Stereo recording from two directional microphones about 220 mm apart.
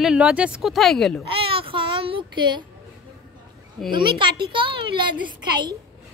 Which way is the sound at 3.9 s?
20° right (ahead or behind).